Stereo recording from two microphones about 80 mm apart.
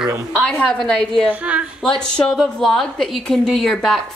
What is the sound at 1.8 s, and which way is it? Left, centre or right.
A woman's voice, centre.